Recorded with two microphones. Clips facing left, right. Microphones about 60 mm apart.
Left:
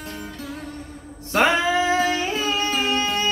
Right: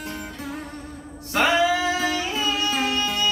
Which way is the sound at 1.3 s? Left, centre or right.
Left.